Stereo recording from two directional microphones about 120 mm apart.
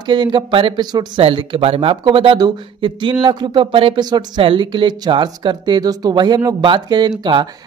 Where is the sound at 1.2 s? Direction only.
50° right (ahead or behind).